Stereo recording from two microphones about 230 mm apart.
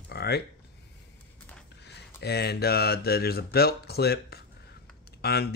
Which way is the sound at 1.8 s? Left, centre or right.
Left.